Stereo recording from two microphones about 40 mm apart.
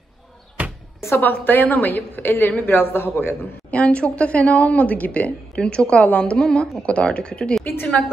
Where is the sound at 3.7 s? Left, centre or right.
Left.